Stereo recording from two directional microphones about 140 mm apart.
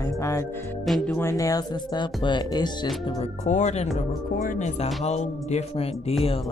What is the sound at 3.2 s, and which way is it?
Speech, 55° left (ahead or behind).